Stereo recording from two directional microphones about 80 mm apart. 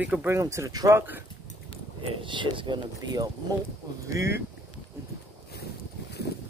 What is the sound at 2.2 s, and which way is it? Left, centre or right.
Speech, right.